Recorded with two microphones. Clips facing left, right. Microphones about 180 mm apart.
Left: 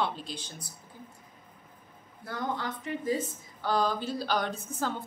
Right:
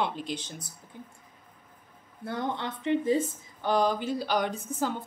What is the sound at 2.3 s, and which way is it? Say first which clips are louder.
Speech: right 2 dB; 25° right (ahead or behind).